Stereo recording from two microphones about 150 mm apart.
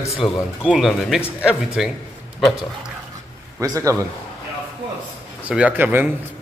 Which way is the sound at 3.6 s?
20° right (ahead or behind).